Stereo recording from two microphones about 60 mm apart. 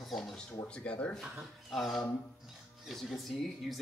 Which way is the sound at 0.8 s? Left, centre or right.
Left.